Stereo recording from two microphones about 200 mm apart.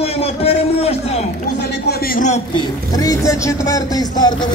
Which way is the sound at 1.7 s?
50° left (ahead or behind).